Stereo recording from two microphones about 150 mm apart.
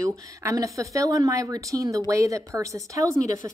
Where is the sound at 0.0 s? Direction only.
20° right (ahead or behind).